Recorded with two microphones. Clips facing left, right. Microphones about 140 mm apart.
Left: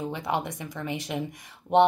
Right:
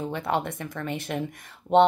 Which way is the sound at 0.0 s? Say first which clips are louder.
Right 2 dB; 15° left (ahead or behind).